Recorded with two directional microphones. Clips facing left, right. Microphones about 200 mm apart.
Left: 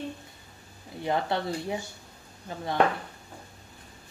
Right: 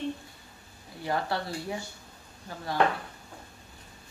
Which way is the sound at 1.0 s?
20° left (ahead or behind).